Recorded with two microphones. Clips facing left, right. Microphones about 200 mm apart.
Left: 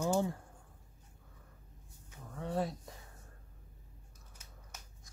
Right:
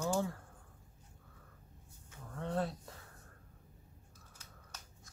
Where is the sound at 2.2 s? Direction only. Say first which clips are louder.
Left 1 dB; 5° left (ahead or behind).